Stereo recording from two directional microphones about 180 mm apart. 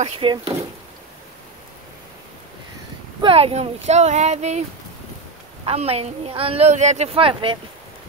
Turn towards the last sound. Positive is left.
turn(degrees=-30)  # may be behind; listen again after turning